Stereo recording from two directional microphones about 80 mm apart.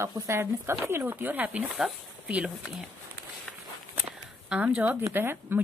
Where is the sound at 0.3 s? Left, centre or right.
Right; by 2.8 s centre.